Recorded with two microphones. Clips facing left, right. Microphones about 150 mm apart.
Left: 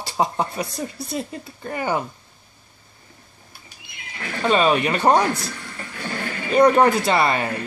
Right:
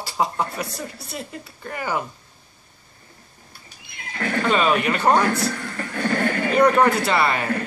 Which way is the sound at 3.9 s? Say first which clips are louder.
Right 7 dB; 50° right (ahead or behind).